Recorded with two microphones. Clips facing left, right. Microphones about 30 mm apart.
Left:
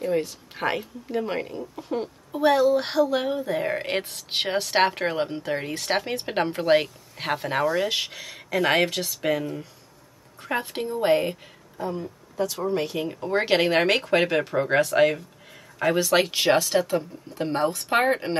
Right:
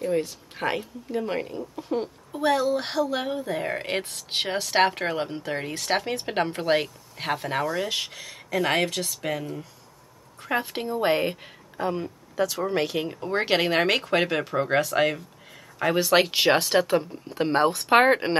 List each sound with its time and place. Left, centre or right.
0.0 s a woman's voice: centre
10.4 s a woman's voice: centre
11.8 s speech: right
13.1 s a woman's voice: centre
16.0 s speech: right
16.5 s speech: right
17.9 s speech: right